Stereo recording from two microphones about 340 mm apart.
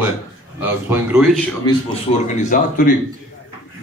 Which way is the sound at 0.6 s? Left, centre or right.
Centre.